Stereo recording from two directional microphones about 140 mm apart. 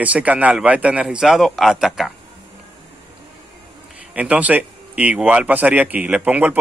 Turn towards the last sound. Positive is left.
turn(degrees=-10)  # may be behind; listen again after turning